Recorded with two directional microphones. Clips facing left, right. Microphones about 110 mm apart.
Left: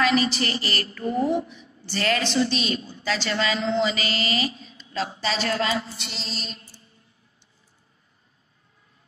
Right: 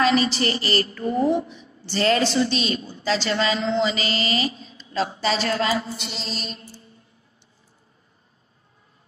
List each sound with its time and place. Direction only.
0.0 s a woman's voice: 30° right (ahead or behind)
6.1 s mantra: 45° right (ahead or behind)
6.6 s mantra: 30° right (ahead or behind)